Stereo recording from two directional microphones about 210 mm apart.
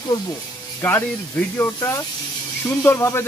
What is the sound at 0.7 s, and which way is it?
Speech, 10° left (ahead or behind).